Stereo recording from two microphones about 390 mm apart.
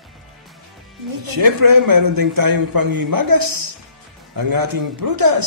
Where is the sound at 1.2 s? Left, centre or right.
Right.